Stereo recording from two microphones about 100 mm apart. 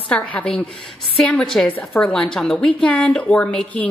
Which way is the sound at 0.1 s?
10° left (ahead or behind).